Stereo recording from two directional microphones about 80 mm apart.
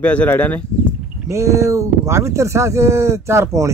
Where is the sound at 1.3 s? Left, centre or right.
Right.